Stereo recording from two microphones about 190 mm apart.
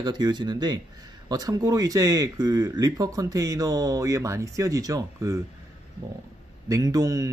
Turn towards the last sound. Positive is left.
turn(degrees=-20)  # may be behind; listen again after turning